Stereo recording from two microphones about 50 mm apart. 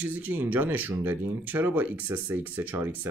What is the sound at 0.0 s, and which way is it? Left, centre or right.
Speech, right.